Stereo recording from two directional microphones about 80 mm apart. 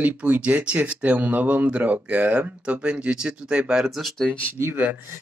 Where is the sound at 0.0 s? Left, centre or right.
Centre.